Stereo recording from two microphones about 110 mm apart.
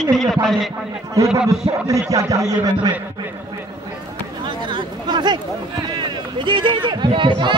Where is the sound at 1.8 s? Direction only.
30° right (ahead or behind).